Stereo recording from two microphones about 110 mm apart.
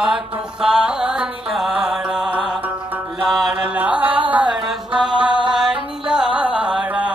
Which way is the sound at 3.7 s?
15° right (ahead or behind).